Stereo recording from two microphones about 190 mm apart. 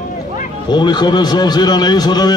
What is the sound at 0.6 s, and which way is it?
A man's voice, 20° left (ahead or behind).